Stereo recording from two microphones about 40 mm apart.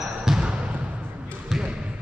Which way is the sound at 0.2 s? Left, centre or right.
Right.